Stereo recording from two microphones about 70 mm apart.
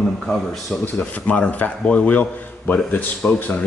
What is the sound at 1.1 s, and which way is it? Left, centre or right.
Speech, centre.